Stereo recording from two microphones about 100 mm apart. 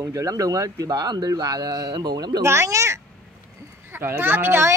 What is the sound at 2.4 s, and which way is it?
Speech, 25° right (ahead or behind).